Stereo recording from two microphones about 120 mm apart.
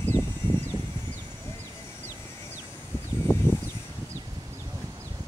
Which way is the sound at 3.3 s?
20° left (ahead or behind).